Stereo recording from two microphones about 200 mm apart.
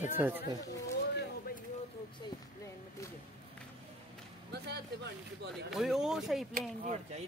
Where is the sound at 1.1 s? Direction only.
50° left (ahead or behind).